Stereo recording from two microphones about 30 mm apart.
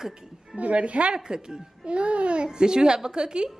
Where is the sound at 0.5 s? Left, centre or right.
Right.